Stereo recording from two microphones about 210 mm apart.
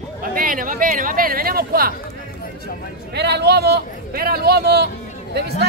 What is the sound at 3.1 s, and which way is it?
Speech, 50° right (ahead or behind).